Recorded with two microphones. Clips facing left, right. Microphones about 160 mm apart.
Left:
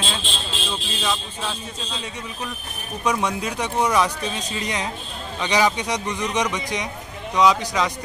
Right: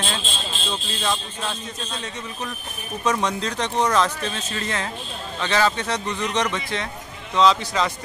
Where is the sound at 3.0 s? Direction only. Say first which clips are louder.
Even; 10° left (ahead or behind).